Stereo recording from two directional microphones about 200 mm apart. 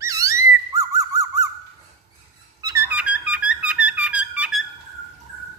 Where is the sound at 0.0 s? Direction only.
15° right (ahead or behind).